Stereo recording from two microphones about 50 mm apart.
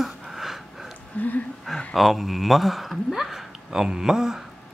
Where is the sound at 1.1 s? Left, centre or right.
Left.